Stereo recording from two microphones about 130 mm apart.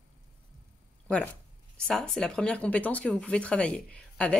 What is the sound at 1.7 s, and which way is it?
Speech, 5° left (ahead or behind).